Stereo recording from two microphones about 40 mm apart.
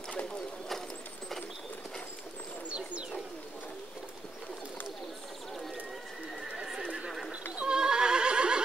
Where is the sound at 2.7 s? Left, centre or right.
Right.